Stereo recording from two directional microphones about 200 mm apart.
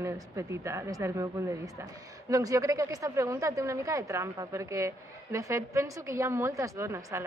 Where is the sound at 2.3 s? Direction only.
15° right (ahead or behind).